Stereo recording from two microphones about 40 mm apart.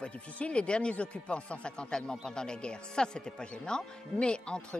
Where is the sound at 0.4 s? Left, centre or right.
Left.